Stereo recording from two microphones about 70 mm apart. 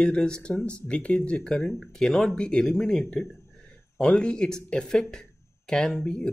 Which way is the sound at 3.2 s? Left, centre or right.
Left.